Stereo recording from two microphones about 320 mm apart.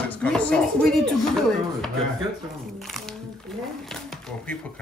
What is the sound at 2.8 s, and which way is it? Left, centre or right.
Speech, centre.